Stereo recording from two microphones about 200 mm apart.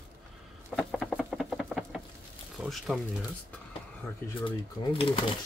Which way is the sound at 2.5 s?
Centre (ahead or behind).